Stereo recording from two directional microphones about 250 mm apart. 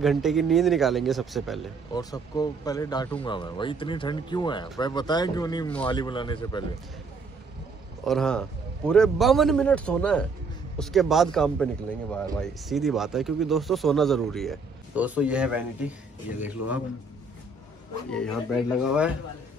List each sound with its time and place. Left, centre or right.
0.0 s a man's voice: centre
1.9 s speech: centre
8.0 s a man's voice: centre
16.6 s a man's voice: left
18.1 s a man's voice: centre